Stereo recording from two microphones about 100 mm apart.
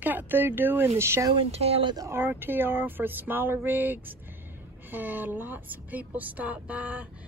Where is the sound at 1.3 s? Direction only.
90° right.